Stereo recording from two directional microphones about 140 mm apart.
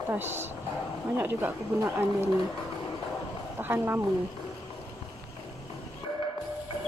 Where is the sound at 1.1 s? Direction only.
15° right (ahead or behind).